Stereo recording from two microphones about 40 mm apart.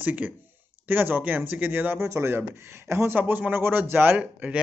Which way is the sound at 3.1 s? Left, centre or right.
Right.